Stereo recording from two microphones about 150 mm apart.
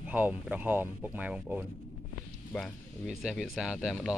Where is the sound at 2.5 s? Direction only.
10° left (ahead or behind).